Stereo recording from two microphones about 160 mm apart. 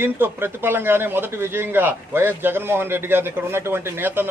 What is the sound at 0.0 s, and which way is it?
A man's voice, 15° right (ahead or behind).